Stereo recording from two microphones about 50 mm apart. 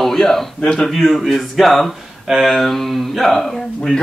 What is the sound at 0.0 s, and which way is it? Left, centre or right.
Speech, centre.